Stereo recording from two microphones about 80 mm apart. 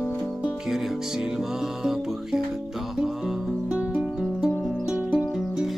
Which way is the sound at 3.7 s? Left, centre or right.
Centre.